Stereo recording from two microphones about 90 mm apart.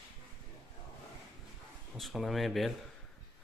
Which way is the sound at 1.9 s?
Centre (ahead or behind).